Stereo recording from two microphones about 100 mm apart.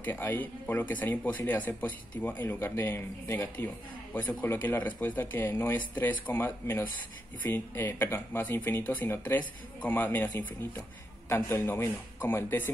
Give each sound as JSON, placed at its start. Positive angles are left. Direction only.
{"t": 0.0, "sound": "speech", "side_deg": 20}